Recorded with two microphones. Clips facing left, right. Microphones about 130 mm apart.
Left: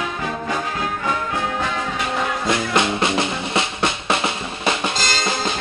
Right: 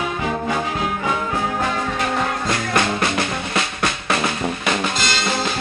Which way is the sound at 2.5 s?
20° left (ahead or behind).